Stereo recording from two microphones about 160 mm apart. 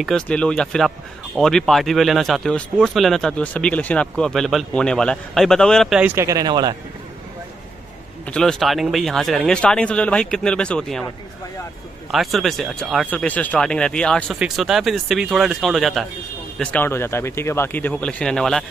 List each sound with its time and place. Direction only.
0.0 s speech: 5° left (ahead or behind)
6.1 s speech: 20° right (ahead or behind)
8.3 s speech: 5° left (ahead or behind)
12.1 s speech: centre (ahead or behind)
16.5 s speech: 10° left (ahead or behind)